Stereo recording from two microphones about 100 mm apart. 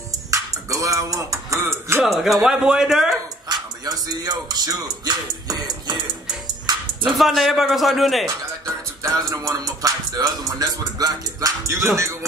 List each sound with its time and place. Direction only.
0.3 s a sound: 35° right (ahead or behind)
2.0 s speech: centre (ahead or behind)
3.4 s speech: 45° right (ahead or behind)
6.4 s music: 45° right (ahead or behind)
7.1 s speech: centre (ahead or behind)
8.6 s music: 30° right (ahead or behind)
12.0 s speech: 30° right (ahead or behind)